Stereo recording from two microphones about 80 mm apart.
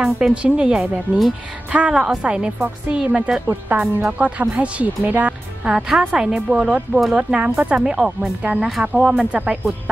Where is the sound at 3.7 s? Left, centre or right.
Right.